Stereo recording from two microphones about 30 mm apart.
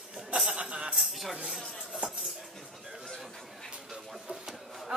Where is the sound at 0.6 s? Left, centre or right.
Right.